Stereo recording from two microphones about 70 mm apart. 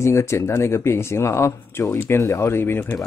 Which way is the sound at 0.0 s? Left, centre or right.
Left.